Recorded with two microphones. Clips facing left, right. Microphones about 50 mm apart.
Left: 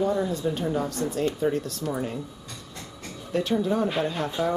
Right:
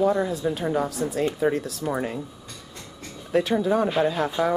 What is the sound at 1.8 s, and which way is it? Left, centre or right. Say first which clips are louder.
Speech: right 4 dB; right.